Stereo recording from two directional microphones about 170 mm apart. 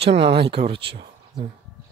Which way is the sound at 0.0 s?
35° right (ahead or behind).